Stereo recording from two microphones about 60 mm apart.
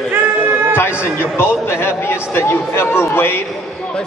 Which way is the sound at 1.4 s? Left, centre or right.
Left.